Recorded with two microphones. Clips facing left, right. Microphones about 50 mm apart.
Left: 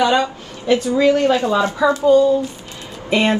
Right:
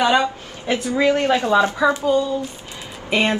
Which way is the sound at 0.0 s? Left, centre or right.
Centre.